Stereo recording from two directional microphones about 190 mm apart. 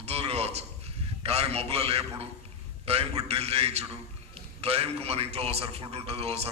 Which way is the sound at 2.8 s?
30° right (ahead or behind).